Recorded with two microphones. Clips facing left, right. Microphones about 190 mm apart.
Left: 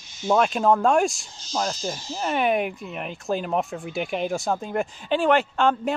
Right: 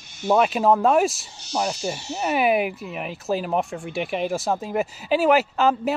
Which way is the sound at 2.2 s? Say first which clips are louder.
Right 2 dB; 5° right (ahead or behind).